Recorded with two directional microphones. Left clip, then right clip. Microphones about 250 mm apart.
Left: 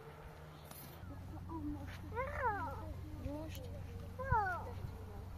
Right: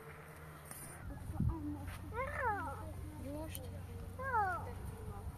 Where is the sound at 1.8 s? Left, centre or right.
Centre.